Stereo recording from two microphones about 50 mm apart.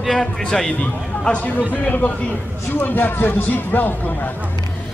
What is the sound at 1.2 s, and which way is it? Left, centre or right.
A man's voice, left.